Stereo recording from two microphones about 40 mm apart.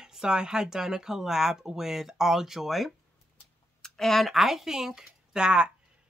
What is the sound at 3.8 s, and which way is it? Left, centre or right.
Speech, centre.